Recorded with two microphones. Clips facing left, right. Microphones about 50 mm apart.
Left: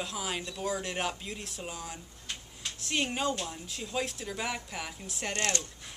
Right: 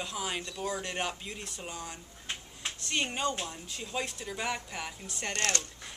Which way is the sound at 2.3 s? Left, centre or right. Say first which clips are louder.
Right 2 dB; right.